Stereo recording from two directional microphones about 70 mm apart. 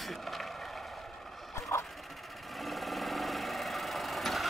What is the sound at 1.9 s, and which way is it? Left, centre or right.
Sewing machine, centre.